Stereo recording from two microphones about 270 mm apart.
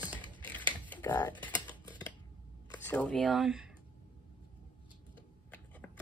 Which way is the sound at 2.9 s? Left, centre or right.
Centre.